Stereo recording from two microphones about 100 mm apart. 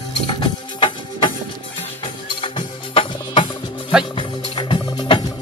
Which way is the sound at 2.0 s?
55° left (ahead or behind).